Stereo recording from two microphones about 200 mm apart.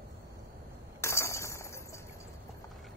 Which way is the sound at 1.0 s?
15° left (ahead or behind).